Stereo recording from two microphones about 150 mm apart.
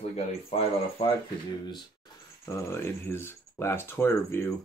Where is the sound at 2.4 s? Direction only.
15° left (ahead or behind).